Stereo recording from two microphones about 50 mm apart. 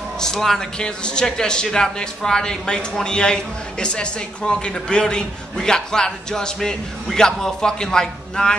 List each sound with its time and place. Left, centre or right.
0.2 s a man's voice: centre